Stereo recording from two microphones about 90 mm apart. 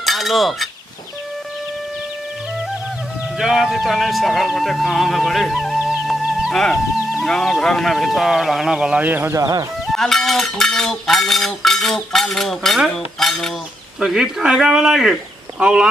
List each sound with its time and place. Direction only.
0.0 s a sound: centre (ahead or behind)
3.3 s speech: 5° right (ahead or behind)
7.2 s cutlery: 10° left (ahead or behind); by 9.1 s 10° right (ahead or behind)
9.1 s speech: 25° right (ahead or behind)
9.4 s speech: 40° right (ahead or behind)
9.9 s cutlery: centre (ahead or behind)
15.6 s speech: 5° right (ahead or behind)